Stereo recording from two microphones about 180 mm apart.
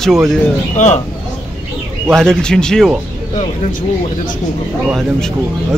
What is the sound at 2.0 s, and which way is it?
Speech, 5° left (ahead or behind).